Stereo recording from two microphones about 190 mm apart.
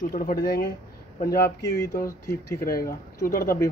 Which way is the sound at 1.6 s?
15° left (ahead or behind).